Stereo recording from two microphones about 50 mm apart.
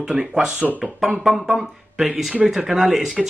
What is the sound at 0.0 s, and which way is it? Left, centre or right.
Speech, centre.